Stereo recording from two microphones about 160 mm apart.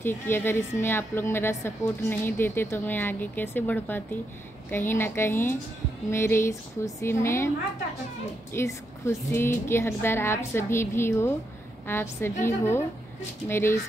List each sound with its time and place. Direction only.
0.0 s a woman's voice: 15° left (ahead or behind)
8.5 s a woman's voice: 20° left (ahead or behind)